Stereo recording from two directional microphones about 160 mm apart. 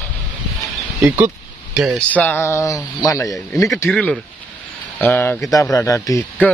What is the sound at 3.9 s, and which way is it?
Speech, 5° left (ahead or behind).